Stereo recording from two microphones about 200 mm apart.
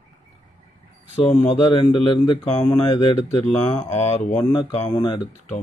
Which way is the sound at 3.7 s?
35° left (ahead or behind).